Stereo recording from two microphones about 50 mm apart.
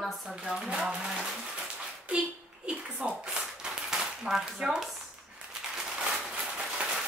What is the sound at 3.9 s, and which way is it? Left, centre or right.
Speech, centre.